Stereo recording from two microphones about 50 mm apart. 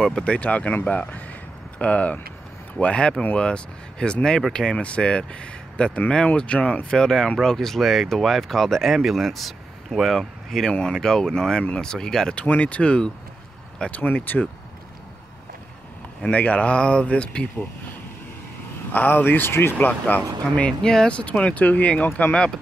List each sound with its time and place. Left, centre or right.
0.2 s speech: left
7.0 s speech: centre
12.4 s speech: left
16.3 s speech: left
18.9 s a man's voice: left
19.9 s speech: left
20.8 s speech: centre
21.6 s speech: left
22.3 s speech: centre